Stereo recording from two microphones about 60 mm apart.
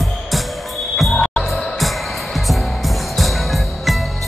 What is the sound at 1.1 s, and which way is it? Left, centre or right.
Music, centre.